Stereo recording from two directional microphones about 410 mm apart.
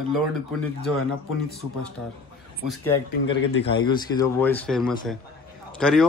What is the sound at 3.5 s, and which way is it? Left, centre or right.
Speech, left.